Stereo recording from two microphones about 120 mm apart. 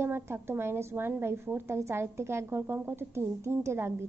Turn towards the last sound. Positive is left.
turn(degrees=-20)  # may be behind; listen again after turning